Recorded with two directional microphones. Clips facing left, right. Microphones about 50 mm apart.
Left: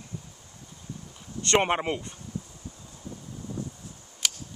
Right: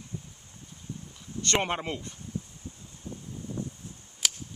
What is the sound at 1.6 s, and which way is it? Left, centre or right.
Speech, left.